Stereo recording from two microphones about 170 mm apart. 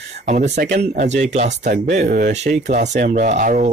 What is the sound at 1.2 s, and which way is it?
Speech, 45° right (ahead or behind).